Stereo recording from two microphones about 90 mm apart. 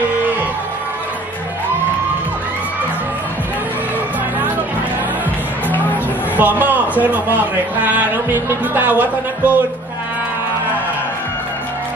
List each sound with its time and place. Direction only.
6.3 s a man's voice: 20° right (ahead or behind)